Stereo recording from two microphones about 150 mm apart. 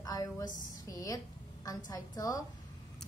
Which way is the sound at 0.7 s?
25° left (ahead or behind).